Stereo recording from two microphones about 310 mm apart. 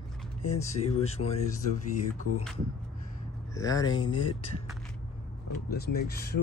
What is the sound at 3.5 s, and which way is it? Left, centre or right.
Speech, centre.